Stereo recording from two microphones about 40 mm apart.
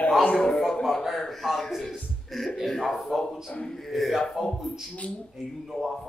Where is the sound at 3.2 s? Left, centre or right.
Left.